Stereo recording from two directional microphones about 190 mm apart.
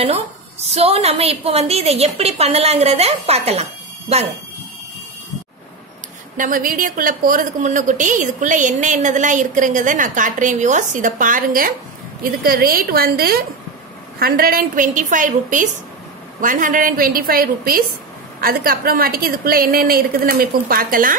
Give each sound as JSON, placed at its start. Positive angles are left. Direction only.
{"t": 0.7, "sound": "a woman's voice", "side_deg": -35}
{"t": 6.3, "sound": "a woman's voice", "side_deg": -45}